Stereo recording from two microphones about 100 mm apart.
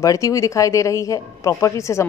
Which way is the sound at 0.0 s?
35° left (ahead or behind).